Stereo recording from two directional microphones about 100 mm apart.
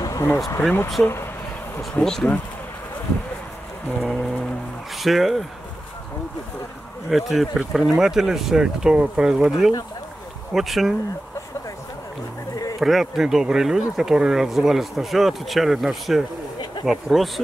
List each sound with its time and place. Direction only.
0.0 s a sound: 30° left (ahead or behind)
1.0 s speech: 25° left (ahead or behind)
1.8 s speech: 5° left (ahead or behind)
4.0 s speech: centre (ahead or behind)
7.1 s speech: centre (ahead or behind)
10.5 s speech: centre (ahead or behind)
12.8 s speech: centre (ahead or behind)